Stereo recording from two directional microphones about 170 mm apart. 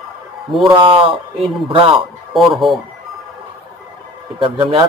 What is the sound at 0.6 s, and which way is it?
Speech, 30° right (ahead or behind).